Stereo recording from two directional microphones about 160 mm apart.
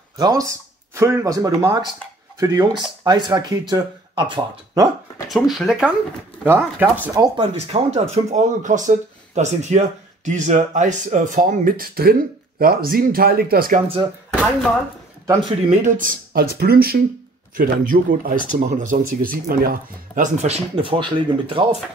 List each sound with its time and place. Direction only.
0.2 s speech: 25° right (ahead or behind)
5.3 s speech: centre (ahead or behind)
6.4 s speech: 15° right (ahead or behind)
7.5 s speech: 40° right (ahead or behind); by 13.7 s 70° right (ahead or behind)
14.3 s speech: 5° right (ahead or behind)
15.7 s speech: 50° right (ahead or behind)
16.3 s speech: 70° right (ahead or behind)
20.4 s speech: 40° right (ahead or behind)